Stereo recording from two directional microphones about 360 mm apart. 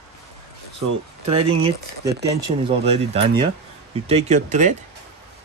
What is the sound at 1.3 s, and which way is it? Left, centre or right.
Speech, centre.